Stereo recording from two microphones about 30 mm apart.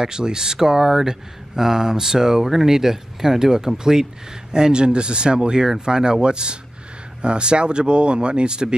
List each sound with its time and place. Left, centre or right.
0.0 s speech: right